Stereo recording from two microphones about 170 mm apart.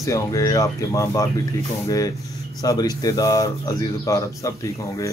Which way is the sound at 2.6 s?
20° left (ahead or behind).